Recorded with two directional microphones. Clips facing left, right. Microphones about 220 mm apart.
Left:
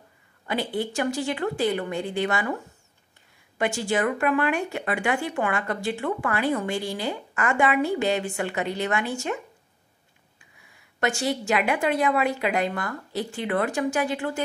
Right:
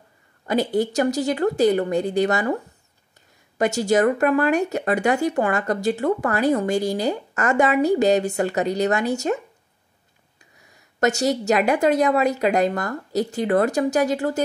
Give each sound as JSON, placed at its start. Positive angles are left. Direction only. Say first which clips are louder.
{"t": 0.5, "sound": "speech", "louder": "right 7 dB", "side_deg": -40}
{"t": 3.5, "sound": "speech", "louder": "right 6 dB", "side_deg": -40}
{"t": 10.4, "sound": "speech", "louder": "right 4 dB", "side_deg": -40}